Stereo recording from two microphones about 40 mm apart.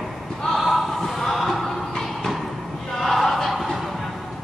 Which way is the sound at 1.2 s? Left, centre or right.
Centre.